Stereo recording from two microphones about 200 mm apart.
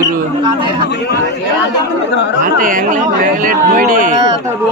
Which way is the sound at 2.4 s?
40° right (ahead or behind).